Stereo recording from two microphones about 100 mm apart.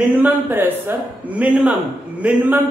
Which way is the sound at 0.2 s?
20° right (ahead or behind).